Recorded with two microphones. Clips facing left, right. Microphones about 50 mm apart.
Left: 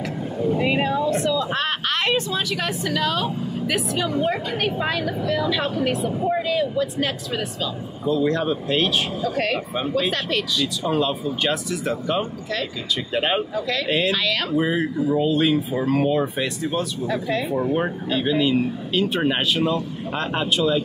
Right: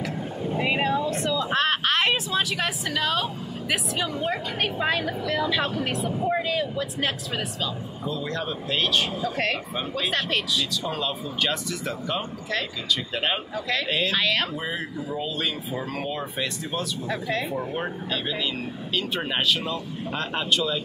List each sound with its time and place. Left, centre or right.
0.6 s speech: centre
8.1 s speech: centre
10.1 s speech: centre
10.8 s speech: centre
13.1 s speech: centre
13.6 s speech: centre
13.8 s speech: centre
14.1 s speech: centre
14.5 s speech: centre
17.6 s speech: centre